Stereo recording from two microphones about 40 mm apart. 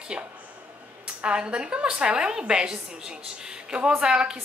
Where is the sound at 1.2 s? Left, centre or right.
Right.